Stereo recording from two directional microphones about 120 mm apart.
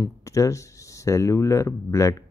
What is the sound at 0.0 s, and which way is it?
Speech, 25° left (ahead or behind).